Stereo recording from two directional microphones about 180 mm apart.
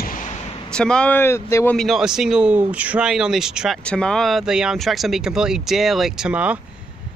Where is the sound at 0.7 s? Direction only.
5° left (ahead or behind).